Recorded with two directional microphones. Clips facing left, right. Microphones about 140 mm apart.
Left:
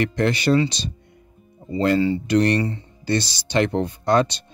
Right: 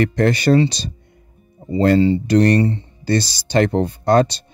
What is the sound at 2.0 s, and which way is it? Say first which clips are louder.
Speech: right 4 dB; 30° right (ahead or behind).